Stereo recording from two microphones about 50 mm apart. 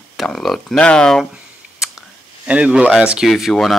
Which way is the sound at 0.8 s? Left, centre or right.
Centre.